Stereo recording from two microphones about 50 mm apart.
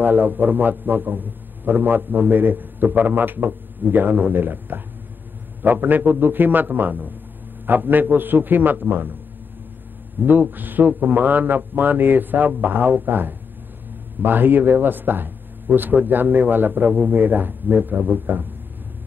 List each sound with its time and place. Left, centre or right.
0.0 s a man's voice: right
10.4 s a man's voice: right